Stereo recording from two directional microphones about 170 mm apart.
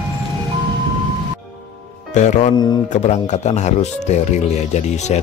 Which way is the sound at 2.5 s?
25° left (ahead or behind).